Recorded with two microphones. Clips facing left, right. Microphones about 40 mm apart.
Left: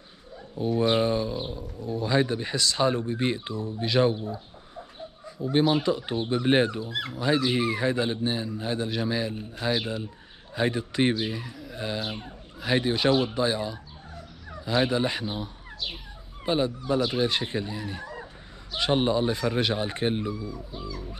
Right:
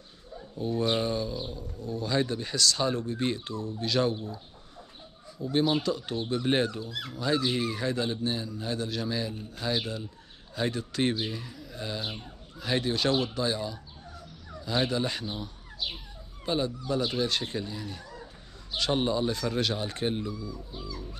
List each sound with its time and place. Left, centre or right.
0.6 s speech: left
7.2 s speech: left
18.0 s a sound: left
18.8 s speech: left